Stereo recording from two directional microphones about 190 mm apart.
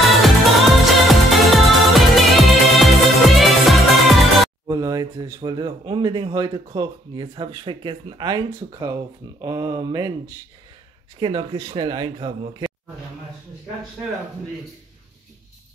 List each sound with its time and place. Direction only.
0.1 s music: centre (ahead or behind)
4.6 s speech: 20° right (ahead or behind)